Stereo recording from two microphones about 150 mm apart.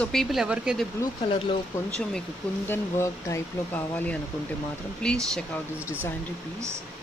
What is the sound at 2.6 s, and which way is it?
Speech, 15° left (ahead or behind).